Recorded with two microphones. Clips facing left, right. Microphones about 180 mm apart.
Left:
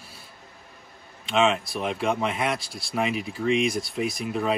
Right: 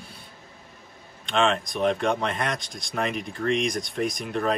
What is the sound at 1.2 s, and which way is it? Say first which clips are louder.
Speech: left 1 dB; 5° left (ahead or behind).